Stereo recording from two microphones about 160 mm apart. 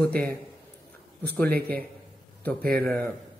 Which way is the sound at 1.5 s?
75° right (ahead or behind).